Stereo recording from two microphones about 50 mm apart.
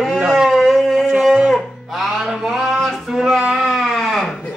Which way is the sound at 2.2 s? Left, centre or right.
Centre.